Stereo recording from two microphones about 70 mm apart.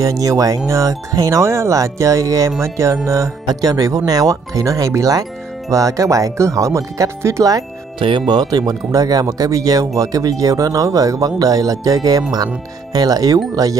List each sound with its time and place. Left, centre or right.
0.0 s speech: right
3.4 s speech: right
8.3 s speech: right